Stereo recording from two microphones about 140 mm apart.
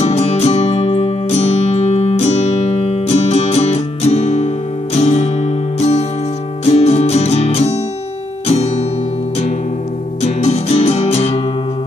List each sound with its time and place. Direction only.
0.0 s music: 50° left (ahead or behind)
10.2 s music: 50° left (ahead or behind)